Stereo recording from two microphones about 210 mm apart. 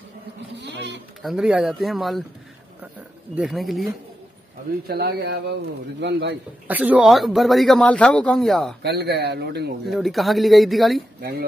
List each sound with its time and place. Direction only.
0.6 s goat: 55° right (ahead or behind)
1.2 s speech: 5° right (ahead or behind)
3.3 s speech: centre (ahead or behind)
4.8 s a man's voice: 50° right (ahead or behind)
6.7 s speech: 10° right (ahead or behind)
8.8 s a man's voice: 50° right (ahead or behind)
9.8 s speech: centre (ahead or behind)
11.1 s speech: 50° right (ahead or behind)